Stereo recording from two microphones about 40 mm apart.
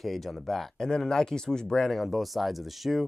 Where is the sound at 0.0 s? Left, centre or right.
Centre.